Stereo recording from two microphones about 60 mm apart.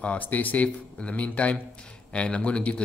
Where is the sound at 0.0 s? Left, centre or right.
Left.